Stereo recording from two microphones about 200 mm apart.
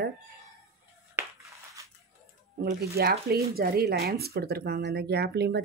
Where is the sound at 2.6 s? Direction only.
50° right (ahead or behind).